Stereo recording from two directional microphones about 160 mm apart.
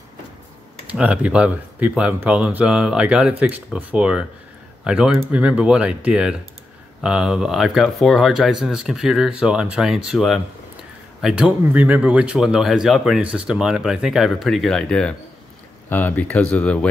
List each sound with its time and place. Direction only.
0.9 s speech: 5° right (ahead or behind)